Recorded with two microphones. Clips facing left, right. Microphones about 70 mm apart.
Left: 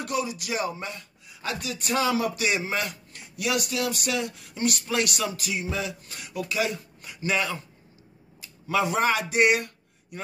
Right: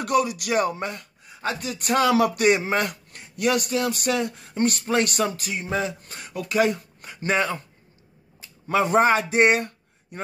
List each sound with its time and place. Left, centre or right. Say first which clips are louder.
0.0 s speech: right 7 dB; right
2.4 s speech: right 7 dB; right